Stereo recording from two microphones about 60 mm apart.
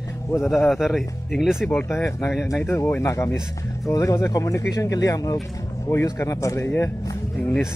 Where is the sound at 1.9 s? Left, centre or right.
Left.